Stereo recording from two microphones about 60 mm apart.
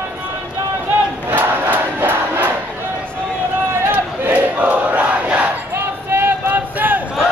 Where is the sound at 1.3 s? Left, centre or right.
Right.